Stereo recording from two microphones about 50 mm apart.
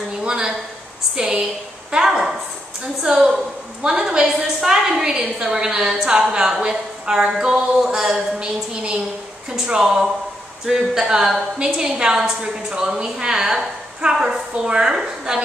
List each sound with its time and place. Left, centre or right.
0.2 s a woman's voice: centre
1.1 s a sound: centre
3.0 s a woman's voice: centre